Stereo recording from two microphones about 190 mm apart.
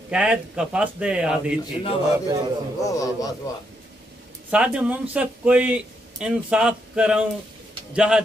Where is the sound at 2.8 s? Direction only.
20° left (ahead or behind).